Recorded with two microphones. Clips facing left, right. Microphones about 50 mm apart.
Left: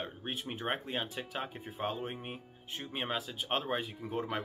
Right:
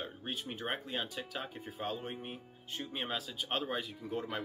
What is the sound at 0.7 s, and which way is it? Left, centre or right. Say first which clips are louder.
Speech: left 2 dB; left.